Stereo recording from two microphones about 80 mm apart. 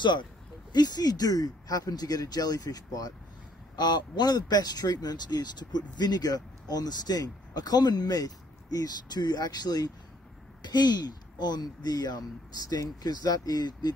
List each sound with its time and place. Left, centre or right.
0.0 s speech: left
0.7 s speech: left
3.7 s speech: left